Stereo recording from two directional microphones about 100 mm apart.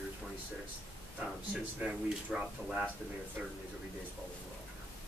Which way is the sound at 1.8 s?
20° right (ahead or behind).